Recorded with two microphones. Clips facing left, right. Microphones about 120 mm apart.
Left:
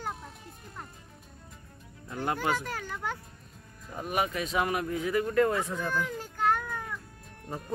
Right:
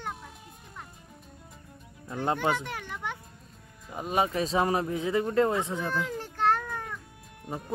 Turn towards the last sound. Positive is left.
turn(degrees=-5)  # may be behind; listen again after turning